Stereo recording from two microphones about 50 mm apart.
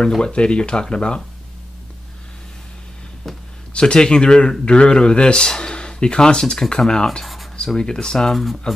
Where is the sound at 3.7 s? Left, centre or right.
Centre.